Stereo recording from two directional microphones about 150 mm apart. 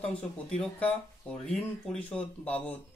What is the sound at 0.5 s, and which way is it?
Speech, 5° left (ahead or behind).